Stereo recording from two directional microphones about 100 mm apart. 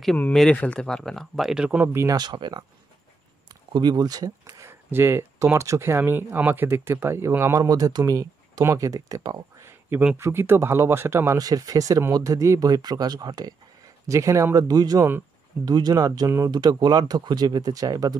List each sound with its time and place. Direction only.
0.3 s speech: 10° left (ahead or behind); by 1.9 s 10° right (ahead or behind)
1.9 s speech: 25° right (ahead or behind)
2.1 s speech: 45° right (ahead or behind)
3.7 s speech: 45° right (ahead or behind)
9.7 s a sound: 25° right (ahead or behind)
10.1 s speech: 25° right (ahead or behind)
11.3 s speech: 40° right (ahead or behind)